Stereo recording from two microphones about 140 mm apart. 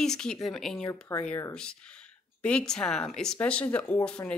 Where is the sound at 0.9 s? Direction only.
20° left (ahead or behind).